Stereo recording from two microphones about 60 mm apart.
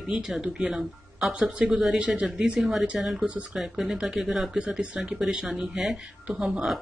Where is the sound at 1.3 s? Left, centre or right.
Centre.